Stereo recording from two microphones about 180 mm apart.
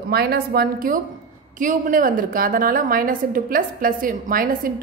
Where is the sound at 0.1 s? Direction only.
60° right (ahead or behind).